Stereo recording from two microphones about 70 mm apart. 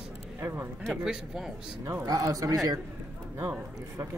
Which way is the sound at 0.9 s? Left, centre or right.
Centre.